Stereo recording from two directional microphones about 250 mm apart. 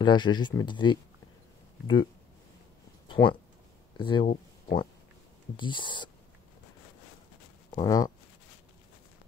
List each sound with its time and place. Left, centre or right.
0.0 s speech: centre
3.1 s a sound: centre
4.0 s speech: centre
7.7 s speech: centre